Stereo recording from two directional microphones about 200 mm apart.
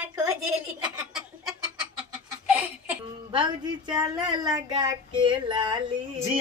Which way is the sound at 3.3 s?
20° right (ahead or behind).